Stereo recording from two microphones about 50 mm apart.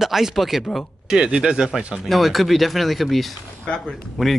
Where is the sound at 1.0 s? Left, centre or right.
Centre.